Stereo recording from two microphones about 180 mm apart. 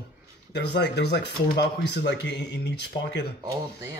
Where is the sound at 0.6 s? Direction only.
70° left (ahead or behind).